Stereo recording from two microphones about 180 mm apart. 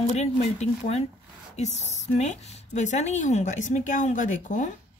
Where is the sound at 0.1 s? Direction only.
40° left (ahead or behind).